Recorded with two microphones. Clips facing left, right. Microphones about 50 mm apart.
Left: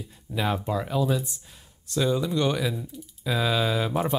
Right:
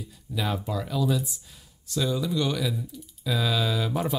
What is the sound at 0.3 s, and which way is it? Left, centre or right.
Speech, left.